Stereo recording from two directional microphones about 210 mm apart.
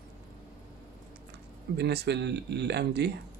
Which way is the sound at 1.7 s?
50° right (ahead or behind).